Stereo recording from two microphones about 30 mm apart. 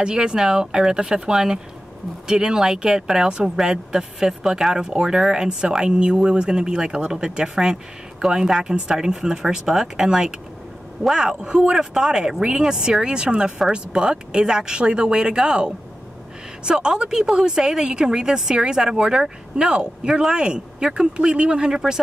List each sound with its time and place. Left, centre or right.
0.0 s a woman's voice: right
8.9 s a woman's voice: centre